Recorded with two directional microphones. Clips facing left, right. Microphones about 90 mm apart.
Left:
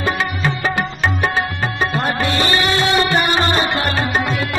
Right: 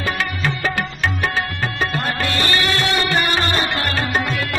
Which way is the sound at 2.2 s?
20° left (ahead or behind).